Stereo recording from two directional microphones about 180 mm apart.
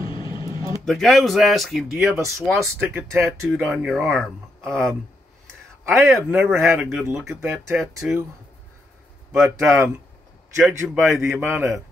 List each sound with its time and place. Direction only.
0.0 s vehicle: 30° left (ahead or behind)
0.8 s speech: centre (ahead or behind)
2.1 s speech: 15° right (ahead or behind)
2.5 s speech: centre (ahead or behind)
5.9 s speech: centre (ahead or behind)
6.4 s speech: 10° right (ahead or behind)
9.4 s speech: 15° right (ahead or behind)
10.8 s speech: centre (ahead or behind)